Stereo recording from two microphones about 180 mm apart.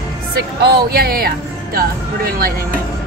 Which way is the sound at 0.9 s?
60° right (ahead or behind).